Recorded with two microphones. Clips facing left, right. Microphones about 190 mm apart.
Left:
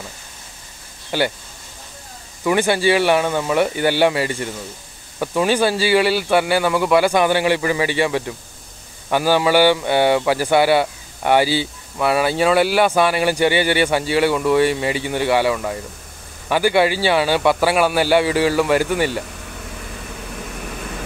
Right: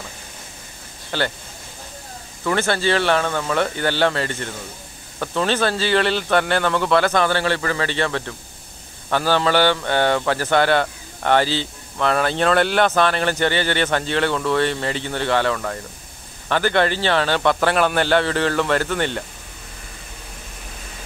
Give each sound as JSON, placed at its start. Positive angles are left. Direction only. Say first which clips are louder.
{"t": 1.1, "sound": "speech", "louder": "left 4 dB", "side_deg": 10}
{"t": 2.4, "sound": "speech", "louder": "left 4 dB", "side_deg": 10}
{"t": 20.5, "sound": "vehicle", "louder": "left 9 dB", "side_deg": 70}